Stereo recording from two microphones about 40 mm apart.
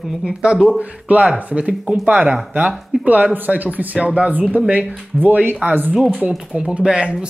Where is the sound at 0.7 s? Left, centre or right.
Right.